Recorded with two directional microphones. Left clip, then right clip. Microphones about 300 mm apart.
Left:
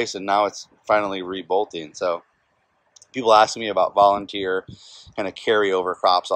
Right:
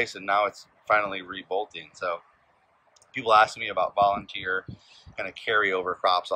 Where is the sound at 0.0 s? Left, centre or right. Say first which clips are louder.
Left 4 dB; centre.